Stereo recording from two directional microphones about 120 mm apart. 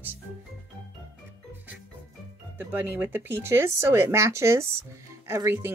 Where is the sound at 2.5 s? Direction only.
15° right (ahead or behind).